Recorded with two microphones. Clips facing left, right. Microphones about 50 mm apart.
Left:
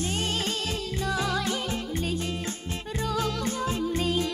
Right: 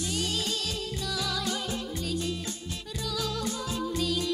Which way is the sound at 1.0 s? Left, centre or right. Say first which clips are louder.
Left 6 dB; left.